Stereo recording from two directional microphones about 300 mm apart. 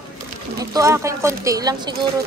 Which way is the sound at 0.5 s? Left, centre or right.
Centre.